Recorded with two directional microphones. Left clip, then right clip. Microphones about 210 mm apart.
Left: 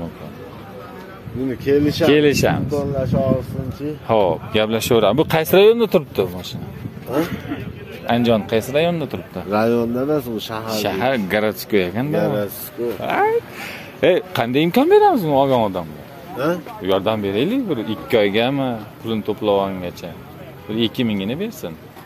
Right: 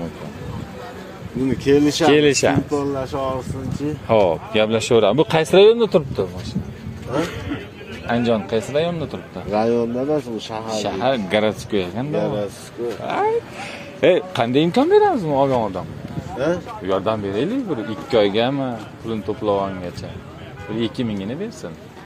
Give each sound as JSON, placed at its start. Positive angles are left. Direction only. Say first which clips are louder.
{"t": 1.6, "sound": "speech", "louder": "right 1 dB", "side_deg": -40}
{"t": 2.0, "sound": "speech", "louder": "left 1 dB", "side_deg": 10}
{"t": 3.0, "sound": "speech", "louder": "left 4 dB", "side_deg": -45}
{"t": 4.1, "sound": "speech", "louder": "even", "side_deg": 10}
{"t": 8.1, "sound": "speech", "louder": "left 2 dB", "side_deg": 25}
{"t": 9.5, "sound": "speech", "louder": "left 1 dB", "side_deg": 55}
{"t": 10.8, "sound": "speech", "louder": "left 1 dB", "side_deg": 25}
{"t": 12.1, "sound": "speech", "louder": "even", "side_deg": 55}
{"t": 13.0, "sound": "speech", "louder": "left 2 dB", "side_deg": 20}
{"t": 16.8, "sound": "speech", "louder": "left 3 dB", "side_deg": 20}